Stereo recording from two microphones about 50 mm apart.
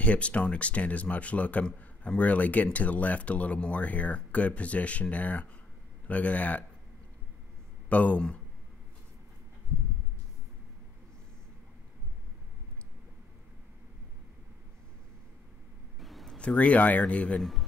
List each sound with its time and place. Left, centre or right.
0.0 s speech: left
7.9 s speech: left
16.0 s a sound: centre
16.3 s speech: left
17.4 s speech: centre